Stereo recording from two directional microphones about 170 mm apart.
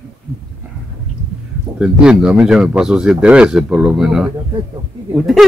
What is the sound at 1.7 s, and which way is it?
Speech, 5° right (ahead or behind).